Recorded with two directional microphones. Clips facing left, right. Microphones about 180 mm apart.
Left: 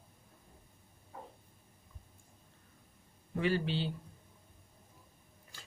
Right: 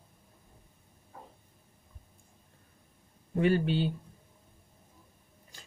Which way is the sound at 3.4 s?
50° right (ahead or behind).